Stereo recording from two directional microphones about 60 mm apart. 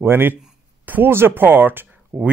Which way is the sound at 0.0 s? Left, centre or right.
Right.